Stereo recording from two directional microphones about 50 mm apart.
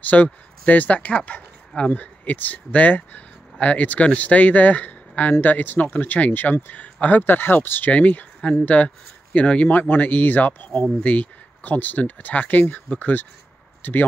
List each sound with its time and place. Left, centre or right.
0.0 s speech: left
7.3 s speech: left
7.9 s speech: left